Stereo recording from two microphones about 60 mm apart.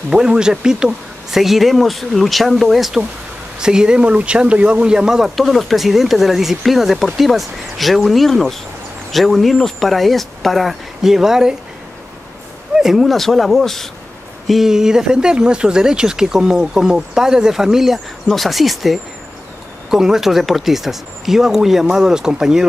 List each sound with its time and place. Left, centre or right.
0.1 s speech: centre
5.3 s speech: centre
12.7 s speech: centre
14.5 s speech: centre